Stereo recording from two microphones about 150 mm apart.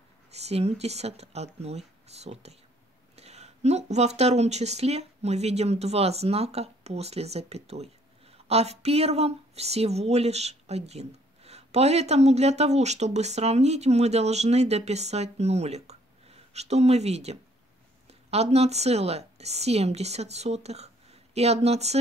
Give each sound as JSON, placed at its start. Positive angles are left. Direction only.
{"t": 0.3, "sound": "a woman's voice", "side_deg": -45}